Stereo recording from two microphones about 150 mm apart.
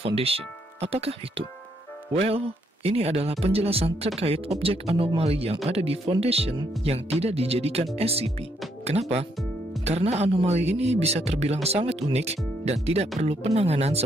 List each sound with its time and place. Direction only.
0.0 s a man's voice: 40° right (ahead or behind)